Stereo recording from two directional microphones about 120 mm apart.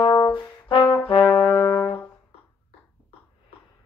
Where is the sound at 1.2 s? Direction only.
15° left (ahead or behind).